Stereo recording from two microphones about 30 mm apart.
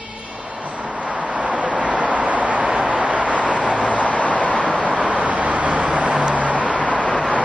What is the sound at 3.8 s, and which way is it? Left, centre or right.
Vehicle, left.